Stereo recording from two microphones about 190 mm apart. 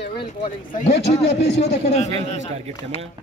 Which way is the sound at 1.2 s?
65° left (ahead or behind).